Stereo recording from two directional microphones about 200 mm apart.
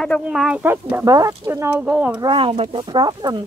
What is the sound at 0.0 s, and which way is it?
Speech, centre (ahead or behind).